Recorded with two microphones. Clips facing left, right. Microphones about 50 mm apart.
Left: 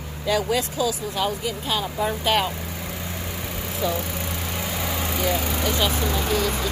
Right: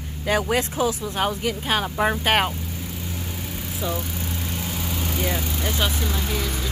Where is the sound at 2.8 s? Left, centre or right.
Left.